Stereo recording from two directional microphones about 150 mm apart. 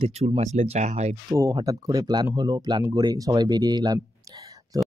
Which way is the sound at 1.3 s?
25° right (ahead or behind).